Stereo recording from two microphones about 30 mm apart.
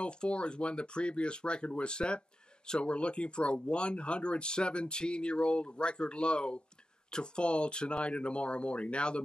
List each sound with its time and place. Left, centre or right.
0.0 s speech: left